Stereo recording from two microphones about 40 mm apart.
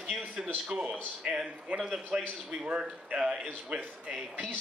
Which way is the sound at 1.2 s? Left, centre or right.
Centre.